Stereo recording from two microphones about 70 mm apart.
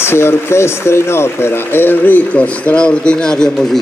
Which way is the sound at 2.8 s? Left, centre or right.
Centre.